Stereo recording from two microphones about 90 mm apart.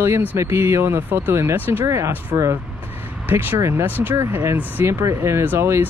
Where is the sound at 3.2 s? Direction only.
20° right (ahead or behind).